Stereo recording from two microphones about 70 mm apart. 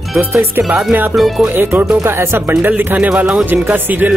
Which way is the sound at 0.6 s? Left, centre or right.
Right.